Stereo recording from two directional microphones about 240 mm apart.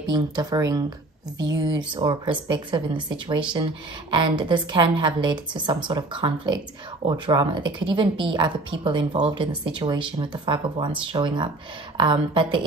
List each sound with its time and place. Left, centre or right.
0.0 s a woman's voice: centre